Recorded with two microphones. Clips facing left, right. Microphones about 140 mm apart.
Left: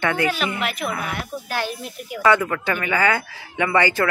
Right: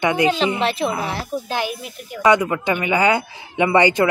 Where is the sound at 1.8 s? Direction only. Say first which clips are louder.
Left 1 dB; 5° left (ahead or behind).